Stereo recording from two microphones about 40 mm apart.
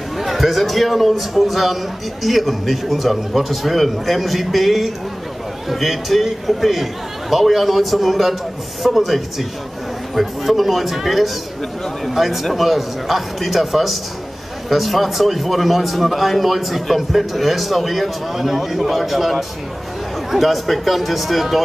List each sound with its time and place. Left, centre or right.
0.2 s a man's voice: centre